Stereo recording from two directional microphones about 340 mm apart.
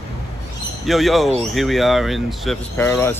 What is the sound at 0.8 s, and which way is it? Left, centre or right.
Speech, centre.